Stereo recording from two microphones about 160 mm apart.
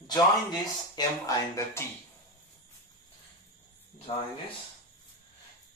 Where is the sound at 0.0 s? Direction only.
25° left (ahead or behind).